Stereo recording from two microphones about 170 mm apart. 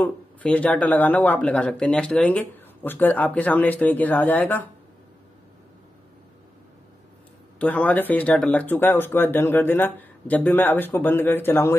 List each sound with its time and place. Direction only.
0.0 s speech: 10° left (ahead or behind)
7.5 s speech: 10° left (ahead or behind)